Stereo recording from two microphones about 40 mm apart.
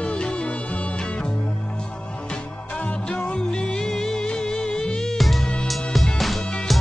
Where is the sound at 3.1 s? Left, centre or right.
Left.